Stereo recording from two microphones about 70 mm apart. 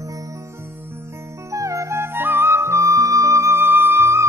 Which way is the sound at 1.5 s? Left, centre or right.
Right.